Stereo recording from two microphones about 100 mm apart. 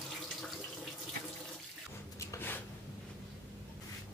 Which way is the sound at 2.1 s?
25° left (ahead or behind).